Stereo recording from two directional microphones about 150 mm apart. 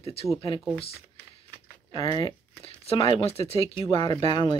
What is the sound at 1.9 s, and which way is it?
Speech, 35° left (ahead or behind).